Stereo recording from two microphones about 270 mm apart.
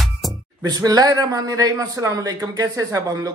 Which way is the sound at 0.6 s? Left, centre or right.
Centre.